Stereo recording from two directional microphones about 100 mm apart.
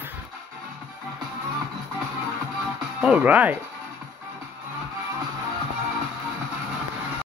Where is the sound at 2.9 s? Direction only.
10° right (ahead or behind).